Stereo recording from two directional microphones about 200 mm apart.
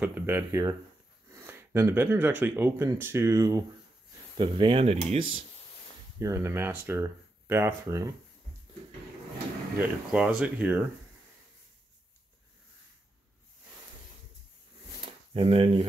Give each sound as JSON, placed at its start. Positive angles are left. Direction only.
{"t": 0.0, "sound": "speech", "side_deg": -10}
{"t": 6.1, "sound": "speech", "side_deg": -15}
{"t": 9.8, "sound": "speech", "side_deg": -5}
{"t": 15.3, "sound": "speech", "side_deg": -25}